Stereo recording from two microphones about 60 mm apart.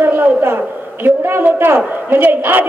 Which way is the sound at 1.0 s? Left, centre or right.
Right.